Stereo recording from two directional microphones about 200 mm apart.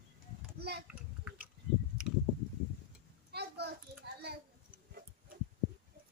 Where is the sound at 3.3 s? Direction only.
55° right (ahead or behind).